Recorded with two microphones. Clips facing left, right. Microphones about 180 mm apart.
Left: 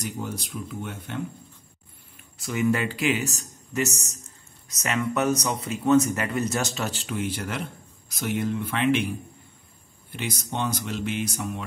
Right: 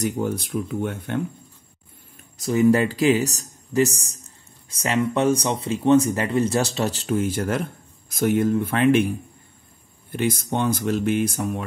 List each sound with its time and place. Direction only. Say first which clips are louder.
0.0 s speech: right 8 dB; 55° right (ahead or behind)
2.1 s a man's voice: right 7 dB; 40° right (ahead or behind)
10.1 s speech: right 8 dB; 50° right (ahead or behind)